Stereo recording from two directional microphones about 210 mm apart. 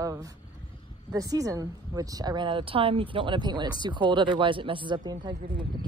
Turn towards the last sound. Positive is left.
turn(degrees=-20)  # may be behind; listen again after turning